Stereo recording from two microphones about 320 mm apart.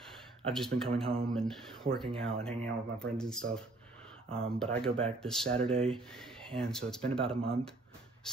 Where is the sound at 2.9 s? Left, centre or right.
Centre.